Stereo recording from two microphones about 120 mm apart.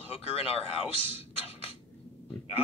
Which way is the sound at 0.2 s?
55° left (ahead or behind).